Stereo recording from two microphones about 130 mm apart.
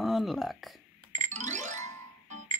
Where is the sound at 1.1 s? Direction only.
65° right (ahead or behind).